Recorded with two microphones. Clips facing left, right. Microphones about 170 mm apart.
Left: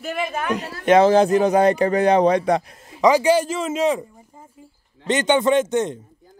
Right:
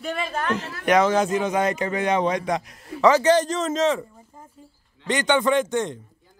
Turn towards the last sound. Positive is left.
turn(degrees=20)  # may be behind; listen again after turning